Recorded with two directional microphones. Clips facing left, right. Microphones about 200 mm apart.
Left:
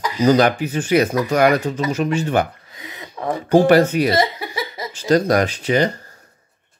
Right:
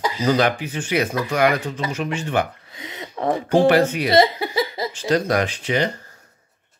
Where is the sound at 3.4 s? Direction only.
40° left (ahead or behind).